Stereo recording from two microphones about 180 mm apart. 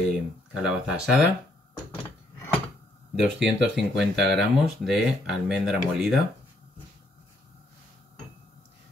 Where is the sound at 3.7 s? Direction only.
Centre (ahead or behind).